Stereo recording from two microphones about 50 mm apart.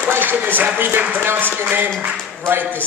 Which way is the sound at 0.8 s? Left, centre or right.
Right.